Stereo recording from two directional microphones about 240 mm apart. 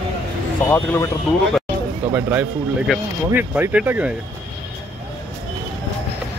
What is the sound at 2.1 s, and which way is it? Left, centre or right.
Speech, centre.